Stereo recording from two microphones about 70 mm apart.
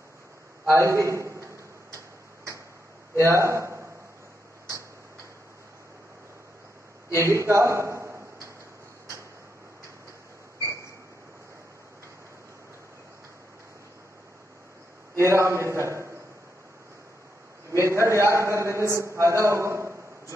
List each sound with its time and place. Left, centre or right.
0.7 s a man's voice: right
3.2 s a man's voice: right
7.2 s a sound: right
15.1 s a man's voice: right
17.6 s a man's voice: right